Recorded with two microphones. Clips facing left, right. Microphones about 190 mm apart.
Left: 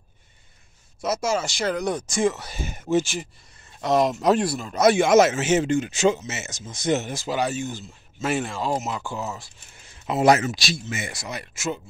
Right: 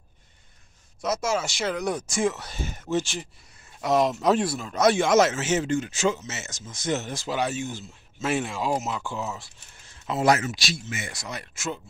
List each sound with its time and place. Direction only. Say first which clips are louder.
1.0 s speech: left 2 dB; centre (ahead or behind)
3.8 s speech: left 2 dB; 5° right (ahead or behind); by 7.2 s 15° left (ahead or behind)
7.2 s speech: left 2 dB; centre (ahead or behind)
9.8 s a sound: left 4 dB; 15° left (ahead or behind)
11.1 s speech: left 2 dB; 5° left (ahead or behind)